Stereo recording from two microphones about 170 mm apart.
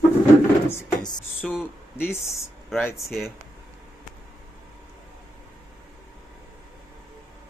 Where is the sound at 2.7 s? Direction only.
Centre (ahead or behind).